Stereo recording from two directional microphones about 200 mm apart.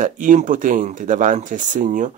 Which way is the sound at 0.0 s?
40° right (ahead or behind).